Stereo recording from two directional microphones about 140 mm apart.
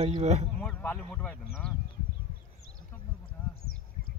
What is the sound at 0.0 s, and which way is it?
Speech, 50° right (ahead or behind).